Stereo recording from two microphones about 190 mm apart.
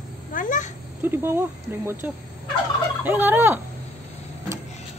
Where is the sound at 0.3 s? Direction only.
45° left (ahead or behind).